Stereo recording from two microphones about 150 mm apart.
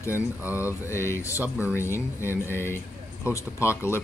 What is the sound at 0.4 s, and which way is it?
Mantra, 10° right (ahead or behind).